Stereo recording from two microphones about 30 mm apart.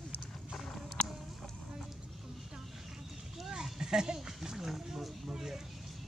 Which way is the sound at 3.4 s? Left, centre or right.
Centre.